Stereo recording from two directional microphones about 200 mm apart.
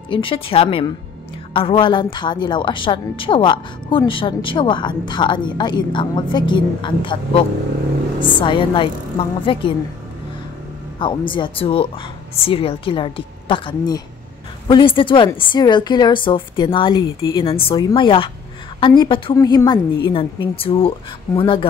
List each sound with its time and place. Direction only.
0.1 s a woman's voice: 25° left (ahead or behind)
11.0 s a woman's voice: 25° left (ahead or behind)